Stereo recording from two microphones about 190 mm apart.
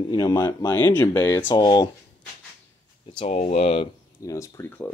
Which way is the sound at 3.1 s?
35° left (ahead or behind).